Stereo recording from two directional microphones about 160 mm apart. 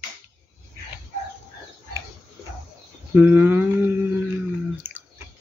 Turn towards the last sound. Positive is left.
turn(degrees=-10)  # may be behind; listen again after turning